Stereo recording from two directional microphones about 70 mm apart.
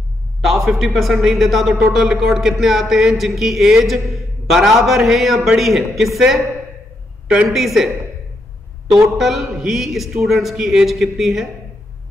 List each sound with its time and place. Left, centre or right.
0.5 s speech: centre
7.4 s speech: centre
8.9 s speech: centre